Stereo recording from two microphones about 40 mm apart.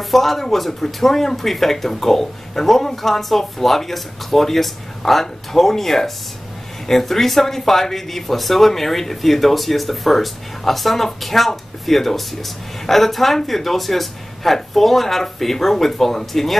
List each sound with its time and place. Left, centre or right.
0.1 s speech: centre